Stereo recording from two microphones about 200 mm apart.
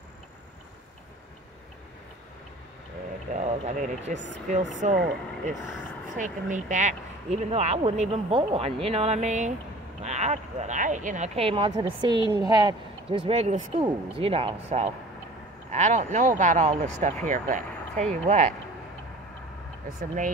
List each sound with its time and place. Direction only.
3.3 s speech: 35° right (ahead or behind)
4.9 s speech: 50° right (ahead or behind)
6.1 s speech: 40° right (ahead or behind); by 12.7 s 20° right (ahead or behind)
13.3 s speech: 35° right (ahead or behind)